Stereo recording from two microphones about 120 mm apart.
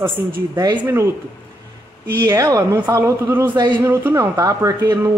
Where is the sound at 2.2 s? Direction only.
30° right (ahead or behind).